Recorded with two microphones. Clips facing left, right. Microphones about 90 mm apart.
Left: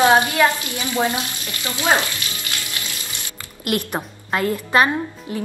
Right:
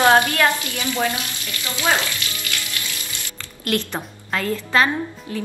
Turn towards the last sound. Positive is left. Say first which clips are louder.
# left 1 dB
turn(degrees=20)  # may be behind; listen again after turning